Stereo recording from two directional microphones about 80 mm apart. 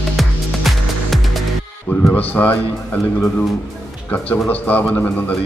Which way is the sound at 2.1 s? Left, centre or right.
Left.